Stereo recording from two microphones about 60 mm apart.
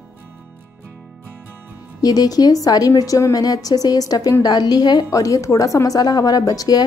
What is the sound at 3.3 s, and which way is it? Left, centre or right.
A woman's voice, left.